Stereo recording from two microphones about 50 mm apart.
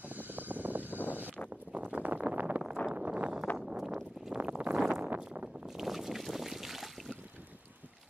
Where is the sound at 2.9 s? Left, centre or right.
Right; by 4.4 s centre.